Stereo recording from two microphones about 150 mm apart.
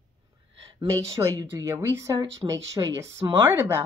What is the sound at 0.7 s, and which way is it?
Speech, 25° right (ahead or behind).